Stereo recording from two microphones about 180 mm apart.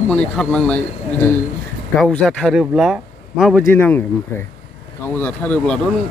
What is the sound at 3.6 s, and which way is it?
Speech, 10° left (ahead or behind).